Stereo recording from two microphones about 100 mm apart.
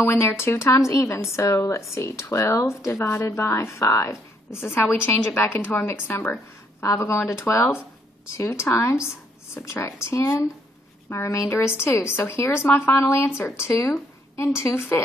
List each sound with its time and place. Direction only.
0.0 s speech: 25° left (ahead or behind)